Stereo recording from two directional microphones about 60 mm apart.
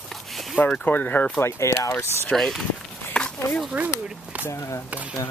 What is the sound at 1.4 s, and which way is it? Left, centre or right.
Speech, left.